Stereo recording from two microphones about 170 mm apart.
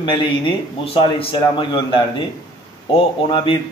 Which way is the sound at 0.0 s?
30° left (ahead or behind).